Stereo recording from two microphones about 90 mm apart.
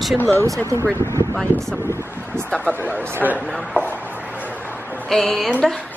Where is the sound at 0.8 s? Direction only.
25° left (ahead or behind).